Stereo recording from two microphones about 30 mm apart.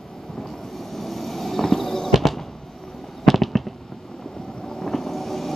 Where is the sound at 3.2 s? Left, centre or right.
Centre.